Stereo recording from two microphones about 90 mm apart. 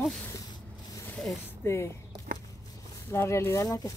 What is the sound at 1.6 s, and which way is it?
Speech, 30° left (ahead or behind).